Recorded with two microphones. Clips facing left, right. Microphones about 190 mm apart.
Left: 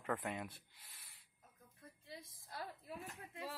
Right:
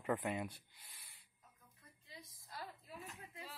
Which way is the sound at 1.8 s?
50° left (ahead or behind).